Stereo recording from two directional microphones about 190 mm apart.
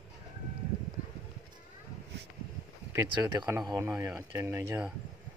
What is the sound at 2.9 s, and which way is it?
Speech, 20° right (ahead or behind).